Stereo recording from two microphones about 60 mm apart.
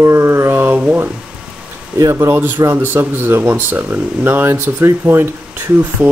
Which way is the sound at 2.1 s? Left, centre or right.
Right.